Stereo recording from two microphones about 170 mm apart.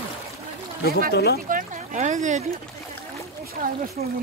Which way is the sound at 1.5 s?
50° right (ahead or behind).